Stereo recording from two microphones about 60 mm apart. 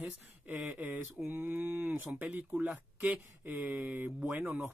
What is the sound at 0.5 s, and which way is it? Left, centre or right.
Speech, right.